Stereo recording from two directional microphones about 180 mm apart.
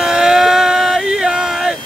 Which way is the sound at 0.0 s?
5° right (ahead or behind).